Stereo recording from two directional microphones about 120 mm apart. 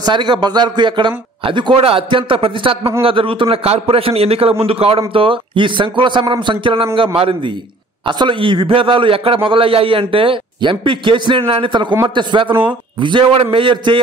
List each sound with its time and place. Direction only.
0.0 s a man's voice: 40° right (ahead or behind)